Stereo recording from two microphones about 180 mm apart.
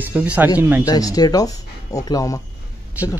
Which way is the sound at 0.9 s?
20° left (ahead or behind).